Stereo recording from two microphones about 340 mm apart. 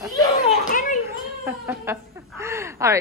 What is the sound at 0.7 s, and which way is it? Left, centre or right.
Children playing, left.